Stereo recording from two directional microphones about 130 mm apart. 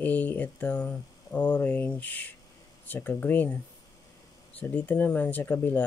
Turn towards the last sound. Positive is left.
turn(degrees=15)  # may be behind; listen again after turning